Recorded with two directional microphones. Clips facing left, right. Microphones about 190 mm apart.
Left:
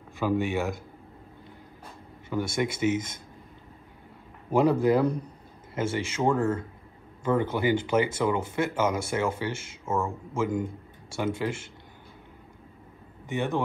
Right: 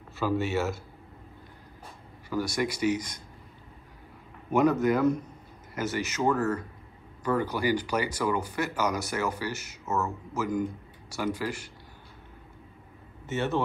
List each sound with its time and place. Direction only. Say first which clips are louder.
0.2 s speech: left 1 dB; 15° left (ahead or behind)
2.2 s speech: left 1 dB; 25° left (ahead or behind)
4.5 s speech: left 1 dB; 30° left (ahead or behind)
13.3 s speech: even; 15° left (ahead or behind)